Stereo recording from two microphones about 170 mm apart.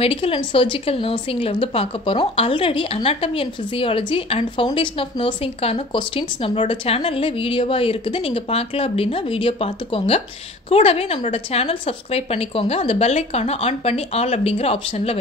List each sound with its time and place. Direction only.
0.0 s speech: 35° left (ahead or behind)